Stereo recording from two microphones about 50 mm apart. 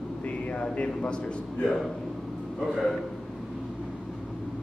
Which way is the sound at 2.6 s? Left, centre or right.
Centre.